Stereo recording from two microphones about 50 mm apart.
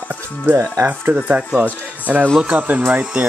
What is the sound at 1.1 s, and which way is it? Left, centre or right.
Speech, right.